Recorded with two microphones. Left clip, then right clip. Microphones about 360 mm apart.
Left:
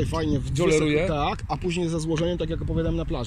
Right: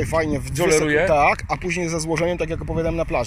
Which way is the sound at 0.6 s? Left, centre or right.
Right.